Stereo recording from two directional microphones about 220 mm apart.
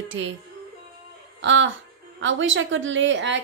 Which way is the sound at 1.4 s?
55° right (ahead or behind).